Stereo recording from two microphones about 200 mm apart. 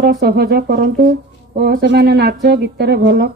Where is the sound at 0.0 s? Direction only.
50° right (ahead or behind).